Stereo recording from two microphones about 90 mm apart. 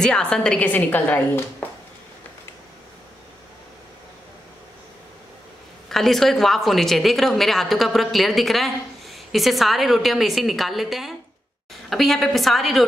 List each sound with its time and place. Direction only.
0.0 s a woman's voice: 5° left (ahead or behind)
5.9 s a woman's voice: 5° left (ahead or behind)